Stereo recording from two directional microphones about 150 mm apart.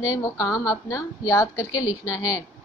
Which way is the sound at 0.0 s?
20° left (ahead or behind).